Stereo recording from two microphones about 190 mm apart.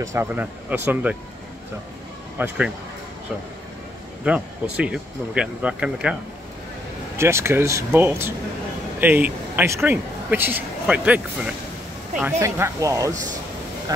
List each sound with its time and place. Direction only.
0.0 s speech: 15° right (ahead or behind)
2.3 s speech: 10° right (ahead or behind)
4.2 s speech: 5° right (ahead or behind)
7.2 s a man's voice: 15° right (ahead or behind)